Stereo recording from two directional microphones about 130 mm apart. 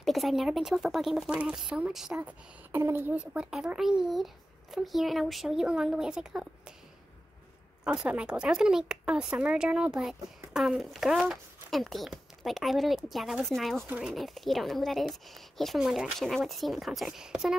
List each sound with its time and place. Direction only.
0.0 s speech: centre (ahead or behind)
7.8 s speech: 5° right (ahead or behind)
13.8 s speech: 10° right (ahead or behind)
14.1 s speech: centre (ahead or behind)